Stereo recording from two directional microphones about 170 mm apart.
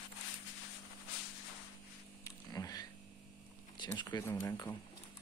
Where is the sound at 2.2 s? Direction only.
20° left (ahead or behind).